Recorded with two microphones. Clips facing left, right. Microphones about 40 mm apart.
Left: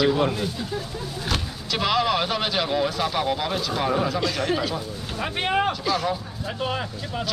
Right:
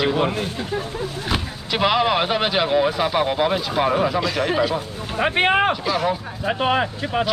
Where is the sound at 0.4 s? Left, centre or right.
Right; by 4.7 s centre.